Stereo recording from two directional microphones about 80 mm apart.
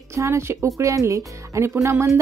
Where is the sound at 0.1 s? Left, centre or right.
Right.